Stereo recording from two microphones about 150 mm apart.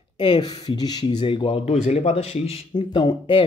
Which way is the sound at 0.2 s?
30° left (ahead or behind).